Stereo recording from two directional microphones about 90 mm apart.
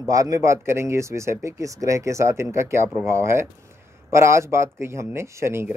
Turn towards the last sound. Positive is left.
turn(degrees=-30)  # may be behind; listen again after turning